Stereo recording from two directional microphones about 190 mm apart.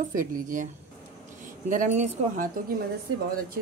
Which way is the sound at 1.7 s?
45° right (ahead or behind).